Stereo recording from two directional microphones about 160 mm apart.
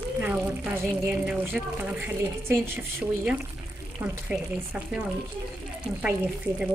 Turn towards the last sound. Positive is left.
turn(degrees=-10)  # may be behind; listen again after turning